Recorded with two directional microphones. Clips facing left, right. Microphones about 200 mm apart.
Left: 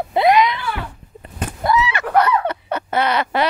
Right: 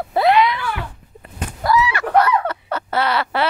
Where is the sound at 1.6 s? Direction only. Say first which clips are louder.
Right 1 dB; 20° left (ahead or behind).